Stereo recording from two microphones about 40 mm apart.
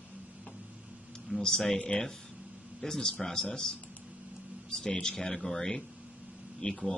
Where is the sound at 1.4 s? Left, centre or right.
Centre.